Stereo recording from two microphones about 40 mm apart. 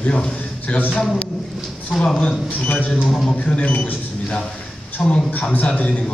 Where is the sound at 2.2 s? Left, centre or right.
Left.